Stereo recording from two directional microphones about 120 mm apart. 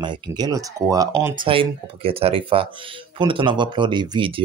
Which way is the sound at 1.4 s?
50° right (ahead or behind).